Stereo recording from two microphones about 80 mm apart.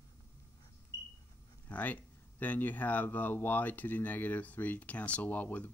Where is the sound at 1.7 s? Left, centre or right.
Centre.